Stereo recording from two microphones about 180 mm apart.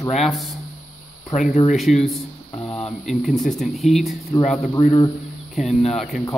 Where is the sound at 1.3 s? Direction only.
45° left (ahead or behind).